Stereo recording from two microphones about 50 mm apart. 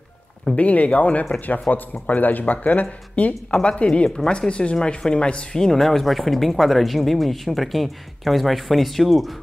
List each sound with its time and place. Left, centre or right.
0.6 s speech: left; by 9.3 s centre